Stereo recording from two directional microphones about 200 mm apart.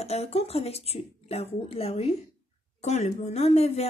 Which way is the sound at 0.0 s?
30° left (ahead or behind).